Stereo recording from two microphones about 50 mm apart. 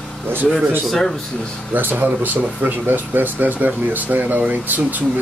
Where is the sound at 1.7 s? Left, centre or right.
Right.